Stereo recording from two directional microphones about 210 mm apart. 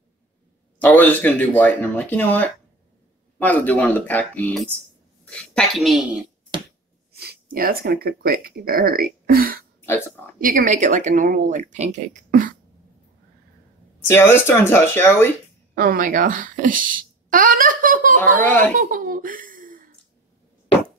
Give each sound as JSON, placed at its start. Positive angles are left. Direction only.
{"t": 0.7, "sound": "a woman's voice", "side_deg": 10}
{"t": 7.1, "sound": "speech", "side_deg": -50}
{"t": 9.8, "sound": "speech", "side_deg": 10}
{"t": 10.4, "sound": "speech", "side_deg": -40}
{"t": 14.0, "sound": "speech", "side_deg": 10}
{"t": 15.7, "sound": "speech", "side_deg": -45}
{"t": 18.4, "sound": "speech", "side_deg": 5}
{"t": 18.8, "sound": "speech", "side_deg": -40}